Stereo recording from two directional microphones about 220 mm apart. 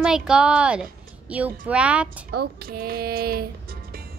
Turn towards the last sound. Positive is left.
turn(degrees=-45)  # may be behind; listen again after turning